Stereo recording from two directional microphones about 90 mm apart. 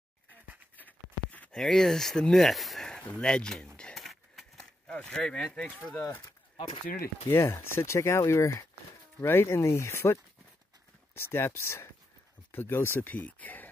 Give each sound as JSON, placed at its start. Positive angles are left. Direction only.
{"t": 0.7, "sound": "a sound", "side_deg": 20}
{"t": 1.6, "sound": "speech", "side_deg": 5}
{"t": 3.9, "sound": "a sound", "side_deg": 0}
{"t": 5.9, "sound": "speech", "side_deg": 20}
{"t": 6.5, "sound": "speech", "side_deg": 70}
{"t": 7.2, "sound": "speech", "side_deg": 25}
{"t": 11.1, "sound": "speech", "side_deg": 25}